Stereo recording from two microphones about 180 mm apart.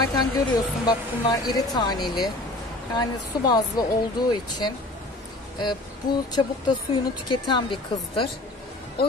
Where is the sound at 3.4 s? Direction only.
20° left (ahead or behind).